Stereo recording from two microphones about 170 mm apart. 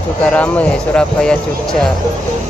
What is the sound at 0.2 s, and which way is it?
Speech, 10° left (ahead or behind).